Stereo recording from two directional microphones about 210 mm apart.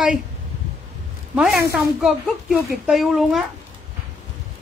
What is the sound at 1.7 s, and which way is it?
Speech, centre (ahead or behind).